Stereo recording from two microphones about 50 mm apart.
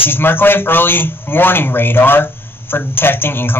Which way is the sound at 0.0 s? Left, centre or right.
Left.